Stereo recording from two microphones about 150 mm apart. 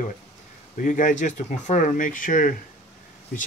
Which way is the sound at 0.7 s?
60° left (ahead or behind).